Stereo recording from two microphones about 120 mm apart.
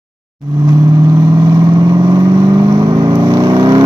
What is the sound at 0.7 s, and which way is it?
Vehicle, 30° right (ahead or behind).